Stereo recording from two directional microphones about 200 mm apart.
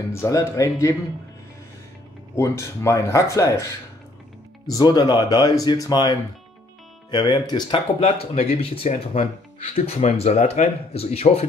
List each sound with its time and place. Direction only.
0.1 s speech: 15° left (ahead or behind)
2.3 s speech: 15° left (ahead or behind)
4.6 s speech: 20° left (ahead or behind)